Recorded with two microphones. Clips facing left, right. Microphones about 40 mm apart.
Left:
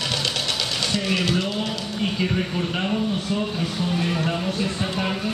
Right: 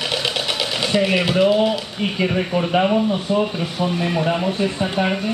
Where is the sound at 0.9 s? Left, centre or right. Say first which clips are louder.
Right 7 dB; centre.